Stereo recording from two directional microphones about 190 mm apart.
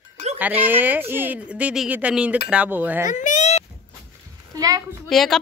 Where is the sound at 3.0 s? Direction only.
40° left (ahead or behind).